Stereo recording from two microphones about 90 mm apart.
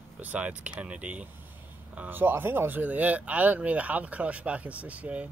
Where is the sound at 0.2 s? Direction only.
15° right (ahead or behind).